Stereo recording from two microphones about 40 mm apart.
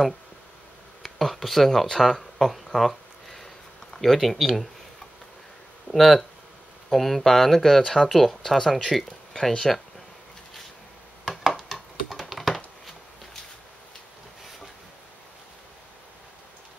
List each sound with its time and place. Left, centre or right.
1.0 s a sound: centre
4.0 s speech: centre
5.9 s speech: centre
7.8 s speech: centre
8.1 s speech: centre
9.3 s speech: centre
11.5 s a sound: centre